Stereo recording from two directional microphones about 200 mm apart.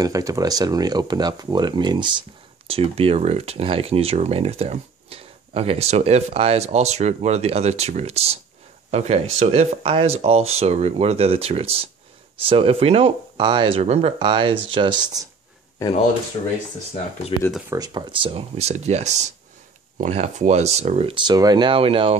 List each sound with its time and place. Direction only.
0.0 s speech: 15° right (ahead or behind)
17.4 s speech: centre (ahead or behind)
17.6 s speech: 20° right (ahead or behind)